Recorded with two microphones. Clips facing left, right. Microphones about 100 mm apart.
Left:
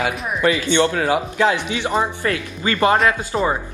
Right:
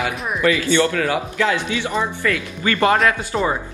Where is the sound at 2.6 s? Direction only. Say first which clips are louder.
Even; 25° left (ahead or behind).